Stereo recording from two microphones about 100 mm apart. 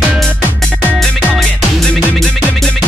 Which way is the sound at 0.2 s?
5° left (ahead or behind).